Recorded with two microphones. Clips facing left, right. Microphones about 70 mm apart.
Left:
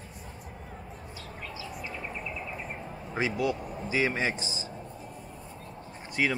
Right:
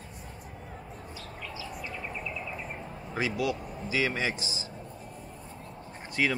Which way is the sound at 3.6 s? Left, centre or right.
Centre.